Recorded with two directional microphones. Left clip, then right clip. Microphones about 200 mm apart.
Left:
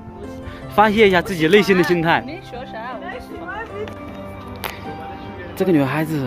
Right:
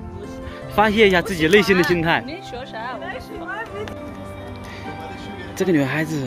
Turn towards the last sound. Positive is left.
turn(degrees=10)  # may be behind; listen again after turning